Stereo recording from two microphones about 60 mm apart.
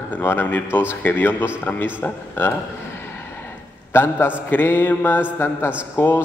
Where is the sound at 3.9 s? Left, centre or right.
Left.